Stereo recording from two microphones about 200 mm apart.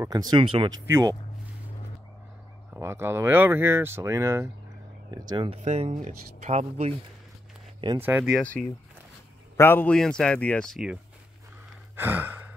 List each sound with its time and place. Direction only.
0.0 s speech: 20° right (ahead or behind)
0.8 s speech: 15° right (ahead or behind)
2.7 s speech: 10° right (ahead or behind); by 7.0 s 30° right (ahead or behind)
8.0 s speech: 10° right (ahead or behind)
8.4 s speech: 5° left (ahead or behind)
12.0 s sigh: 10° right (ahead or behind)